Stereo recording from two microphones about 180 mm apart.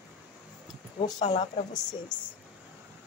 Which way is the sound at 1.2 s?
35° left (ahead or behind).